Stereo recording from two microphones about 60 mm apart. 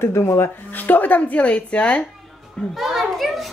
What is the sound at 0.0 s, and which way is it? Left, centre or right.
Speech, left.